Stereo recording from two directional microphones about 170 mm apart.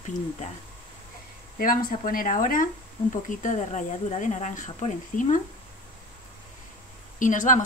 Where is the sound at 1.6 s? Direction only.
55° left (ahead or behind).